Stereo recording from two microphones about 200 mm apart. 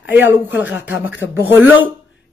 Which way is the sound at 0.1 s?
10° right (ahead or behind).